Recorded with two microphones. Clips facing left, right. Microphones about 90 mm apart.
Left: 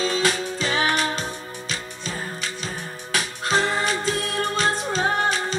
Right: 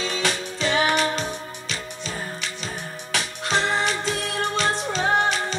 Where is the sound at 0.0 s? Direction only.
40° left (ahead or behind).